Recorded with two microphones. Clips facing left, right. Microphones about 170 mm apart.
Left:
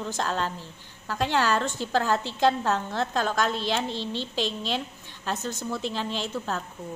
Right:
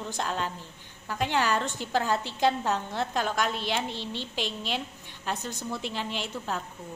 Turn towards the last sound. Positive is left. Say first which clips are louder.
# left 3 dB
turn(degrees=-10)  # may be behind; listen again after turning